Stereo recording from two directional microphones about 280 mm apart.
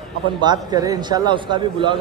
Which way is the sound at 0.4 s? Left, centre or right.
Centre.